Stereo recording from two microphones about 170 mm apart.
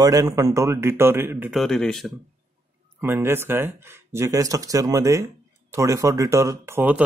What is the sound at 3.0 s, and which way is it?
Speech, 15° right (ahead or behind).